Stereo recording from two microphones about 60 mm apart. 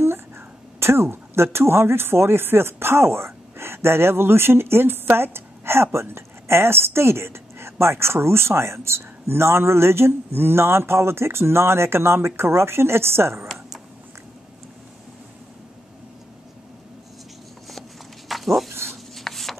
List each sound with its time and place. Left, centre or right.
0.7 s speech: right
18.3 s dog: centre
18.9 s rub: centre